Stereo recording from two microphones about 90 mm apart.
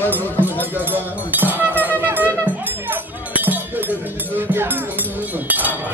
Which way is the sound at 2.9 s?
20° right (ahead or behind).